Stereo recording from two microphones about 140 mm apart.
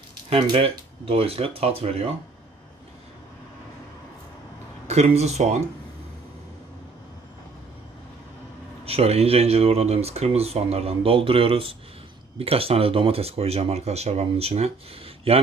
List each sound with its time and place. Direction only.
0.3 s speech: 40° right (ahead or behind)
4.8 s speech: 50° right (ahead or behind)
8.8 s speech: 45° right (ahead or behind)